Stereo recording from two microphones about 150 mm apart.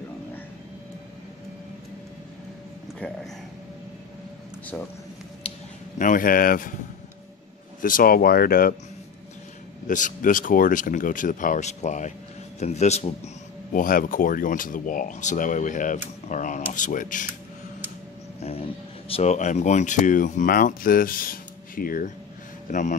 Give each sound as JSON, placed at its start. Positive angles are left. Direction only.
{"t": 5.4, "sound": "a sound", "side_deg": 40}
{"t": 5.9, "sound": "speech", "side_deg": 65}
{"t": 7.8, "sound": "speech", "side_deg": 70}
{"t": 9.8, "sound": "speech", "side_deg": 60}
{"t": 13.7, "sound": "speech", "side_deg": 65}
{"t": 18.4, "sound": "a sound", "side_deg": 40}
{"t": 19.3, "sound": "speech", "side_deg": 55}
{"t": 22.7, "sound": "speech", "side_deg": 55}